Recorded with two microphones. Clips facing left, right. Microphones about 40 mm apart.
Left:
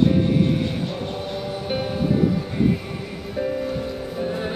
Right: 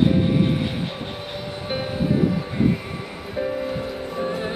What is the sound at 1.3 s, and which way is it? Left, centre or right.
Music, centre.